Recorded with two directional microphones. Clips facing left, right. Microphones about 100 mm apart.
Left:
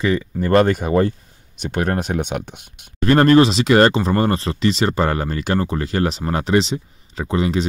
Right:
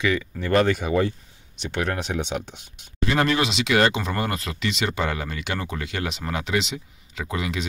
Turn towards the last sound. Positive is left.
turn(degrees=35)  # may be behind; listen again after turning